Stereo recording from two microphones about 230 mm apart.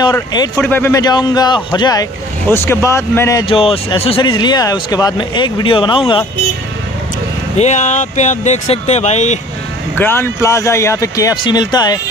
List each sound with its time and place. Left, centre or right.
0.0 s speech: centre
7.5 s speech: left
9.9 s speech: centre